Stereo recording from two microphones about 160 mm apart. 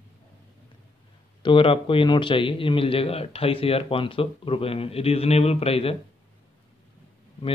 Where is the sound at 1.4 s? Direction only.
35° left (ahead or behind).